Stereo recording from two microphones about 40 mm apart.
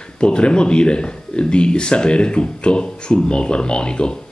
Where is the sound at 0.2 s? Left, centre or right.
Left.